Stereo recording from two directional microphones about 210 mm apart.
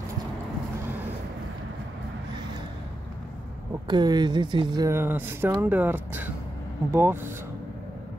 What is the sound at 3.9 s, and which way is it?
Speech, 20° right (ahead or behind).